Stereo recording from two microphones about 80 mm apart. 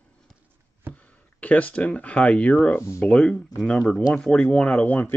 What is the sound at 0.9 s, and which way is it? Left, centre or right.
Speech, centre.